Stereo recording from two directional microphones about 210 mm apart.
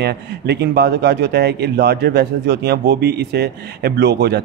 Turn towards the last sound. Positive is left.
turn(degrees=-50)  # may be behind; listen again after turning